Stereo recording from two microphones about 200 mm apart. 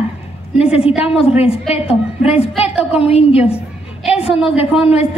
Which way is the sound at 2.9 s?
30° left (ahead or behind).